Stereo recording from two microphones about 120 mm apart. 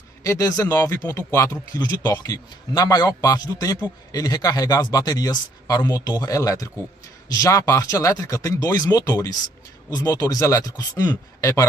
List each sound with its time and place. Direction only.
0.2 s speech: 30° left (ahead or behind)